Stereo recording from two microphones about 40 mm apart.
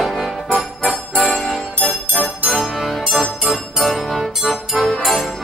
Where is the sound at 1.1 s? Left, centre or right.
Centre.